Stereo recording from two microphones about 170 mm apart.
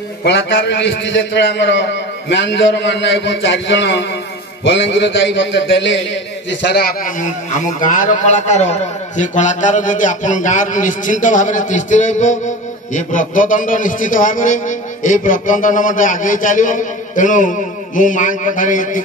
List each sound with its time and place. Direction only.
0.2 s a man's voice: 90° left
6.7 s a man's voice: 65° left (ahead or behind)
7.8 s a man's voice: 50° left (ahead or behind)